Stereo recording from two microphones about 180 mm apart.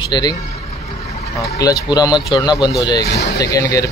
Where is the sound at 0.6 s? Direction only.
35° left (ahead or behind).